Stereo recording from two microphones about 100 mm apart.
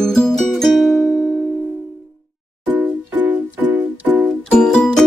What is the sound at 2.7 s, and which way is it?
Music, 15° right (ahead or behind).